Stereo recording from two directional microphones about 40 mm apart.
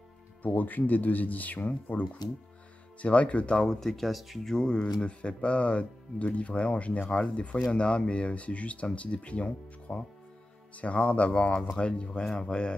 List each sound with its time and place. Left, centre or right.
0.4 s speech: left
3.5 s speech: centre
4.6 s speech: left